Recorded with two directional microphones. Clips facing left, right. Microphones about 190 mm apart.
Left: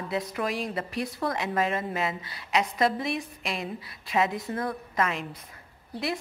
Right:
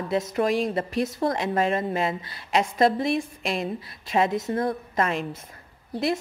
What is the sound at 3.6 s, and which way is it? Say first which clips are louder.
Speech: right 5 dB; 45° right (ahead or behind).